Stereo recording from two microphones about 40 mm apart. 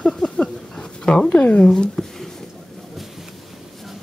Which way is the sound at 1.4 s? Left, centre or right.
Left.